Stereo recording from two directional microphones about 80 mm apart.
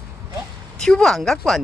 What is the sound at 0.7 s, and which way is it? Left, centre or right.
Speech, centre.